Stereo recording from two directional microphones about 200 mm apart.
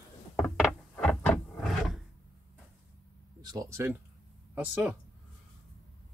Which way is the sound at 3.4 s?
15° right (ahead or behind).